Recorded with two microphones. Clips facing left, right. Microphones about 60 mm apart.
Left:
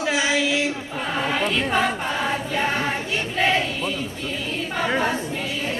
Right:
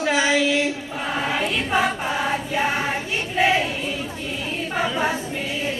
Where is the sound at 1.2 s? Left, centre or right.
Centre.